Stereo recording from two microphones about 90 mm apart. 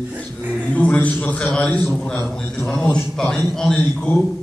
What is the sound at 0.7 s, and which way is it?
A man's voice, 15° left (ahead or behind).